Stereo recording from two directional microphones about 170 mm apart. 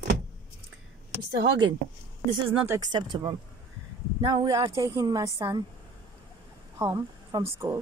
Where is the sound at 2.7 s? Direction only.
25° right (ahead or behind).